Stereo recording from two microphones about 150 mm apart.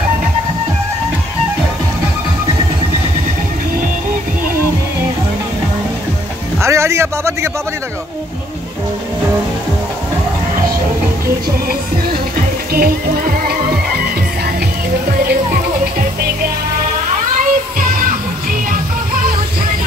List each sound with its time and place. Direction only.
6.6 s a sound: 20° right (ahead or behind)
12.1 s music: 75° right (ahead or behind)
15.0 s music: 75° right (ahead or behind)
17.4 s music: 65° right (ahead or behind)